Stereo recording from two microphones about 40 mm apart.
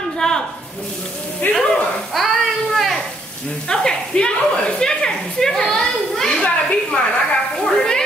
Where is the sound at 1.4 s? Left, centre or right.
Left.